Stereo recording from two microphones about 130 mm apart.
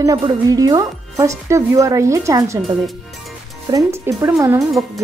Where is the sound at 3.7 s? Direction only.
25° right (ahead or behind).